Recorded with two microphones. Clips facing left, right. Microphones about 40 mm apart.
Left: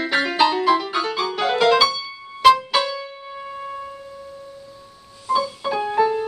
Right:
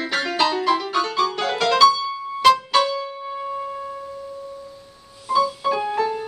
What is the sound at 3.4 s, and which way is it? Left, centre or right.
Music, centre.